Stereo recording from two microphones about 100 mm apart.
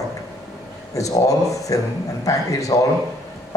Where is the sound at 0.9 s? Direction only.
35° left (ahead or behind).